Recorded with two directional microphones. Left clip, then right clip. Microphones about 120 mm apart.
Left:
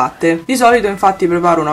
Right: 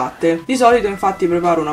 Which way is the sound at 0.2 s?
25° left (ahead or behind).